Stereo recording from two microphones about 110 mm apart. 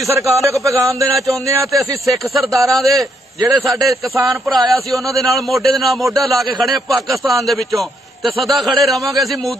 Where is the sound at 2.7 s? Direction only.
Centre (ahead or behind).